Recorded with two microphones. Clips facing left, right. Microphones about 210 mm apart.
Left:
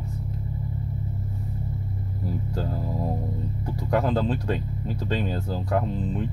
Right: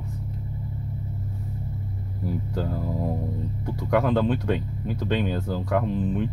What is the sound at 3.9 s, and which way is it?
Speech, 65° right (ahead or behind).